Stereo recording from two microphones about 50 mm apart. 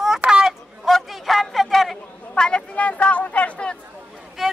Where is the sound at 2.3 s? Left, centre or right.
Centre.